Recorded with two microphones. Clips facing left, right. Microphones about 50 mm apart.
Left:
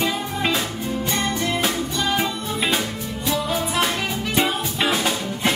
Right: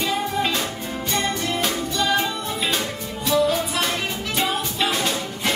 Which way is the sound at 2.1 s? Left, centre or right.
Centre.